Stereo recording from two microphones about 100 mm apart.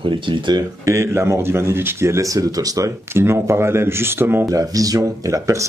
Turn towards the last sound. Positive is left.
turn(degrees=-30)  # may be behind; listen again after turning